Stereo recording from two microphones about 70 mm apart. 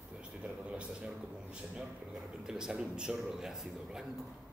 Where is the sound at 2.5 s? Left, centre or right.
Centre.